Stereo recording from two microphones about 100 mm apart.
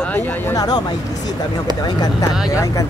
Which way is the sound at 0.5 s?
45° left (ahead or behind).